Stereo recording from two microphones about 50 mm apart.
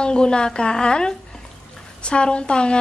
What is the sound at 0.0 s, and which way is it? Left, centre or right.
A woman's voice, centre.